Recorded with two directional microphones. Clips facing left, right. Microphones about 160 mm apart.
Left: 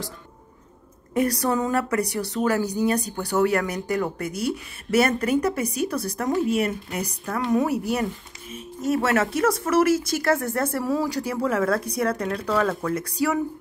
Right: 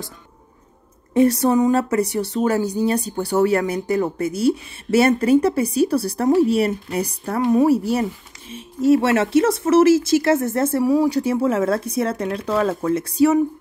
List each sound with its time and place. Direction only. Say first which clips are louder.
1.1 s speech: right 7 dB; 25° right (ahead or behind)